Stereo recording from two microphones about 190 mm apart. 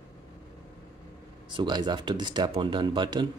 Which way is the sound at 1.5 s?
25° right (ahead or behind).